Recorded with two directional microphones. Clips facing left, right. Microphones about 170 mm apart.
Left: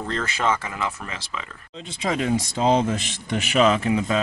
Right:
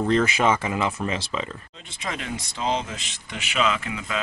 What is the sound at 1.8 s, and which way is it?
Speech, 35° left (ahead or behind).